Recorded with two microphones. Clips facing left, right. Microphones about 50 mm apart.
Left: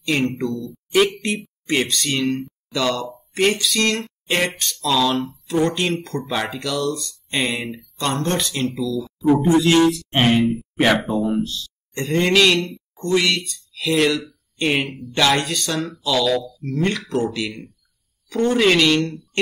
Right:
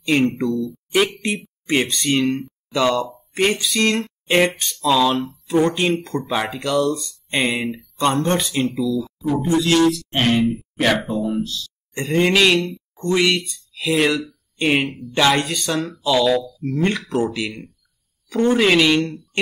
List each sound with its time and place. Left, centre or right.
0.0 s a man's voice: centre
2.7 s speech: centre
3.0 s speech: centre
7.0 s speech: right
7.3 s speech: centre
9.5 s speech: left
10.4 s speech: centre
11.9 s speech: centre